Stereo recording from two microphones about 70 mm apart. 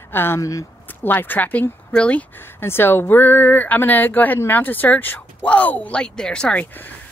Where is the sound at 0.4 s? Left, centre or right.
Left.